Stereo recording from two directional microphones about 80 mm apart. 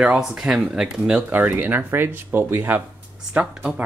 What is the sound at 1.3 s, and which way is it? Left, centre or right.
Speech, right.